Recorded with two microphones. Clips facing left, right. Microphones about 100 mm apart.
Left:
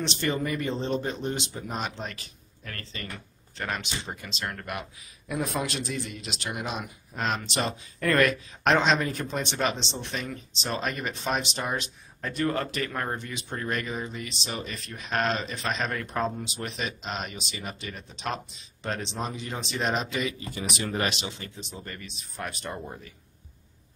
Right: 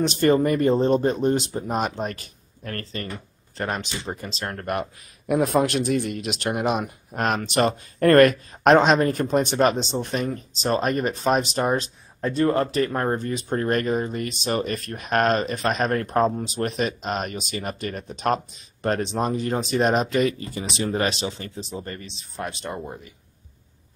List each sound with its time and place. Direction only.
0.0 s speech: 45° right (ahead or behind)
5.3 s speech: 55° right (ahead or behind)
20.5 s speech: 30° right (ahead or behind)